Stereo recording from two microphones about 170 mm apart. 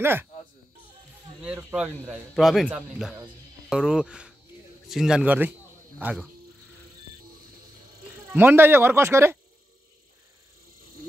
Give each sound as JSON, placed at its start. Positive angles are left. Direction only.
{"t": 0.0, "sound": "speech", "side_deg": -15}
{"t": 1.4, "sound": "speech", "side_deg": -10}
{"t": 8.3, "sound": "speech", "side_deg": -10}